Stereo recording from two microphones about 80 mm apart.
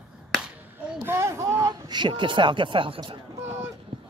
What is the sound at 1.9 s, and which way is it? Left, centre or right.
Speech, right.